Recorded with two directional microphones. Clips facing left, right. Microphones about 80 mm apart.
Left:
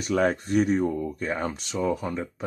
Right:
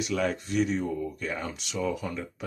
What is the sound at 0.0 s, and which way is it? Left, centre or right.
Speech, left.